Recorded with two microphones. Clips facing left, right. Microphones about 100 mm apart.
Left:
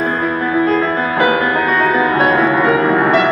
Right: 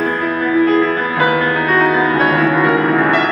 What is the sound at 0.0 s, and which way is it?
Music, 30° left (ahead or behind).